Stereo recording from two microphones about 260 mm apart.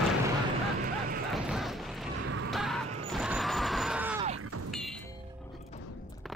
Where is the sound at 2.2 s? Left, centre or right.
Right.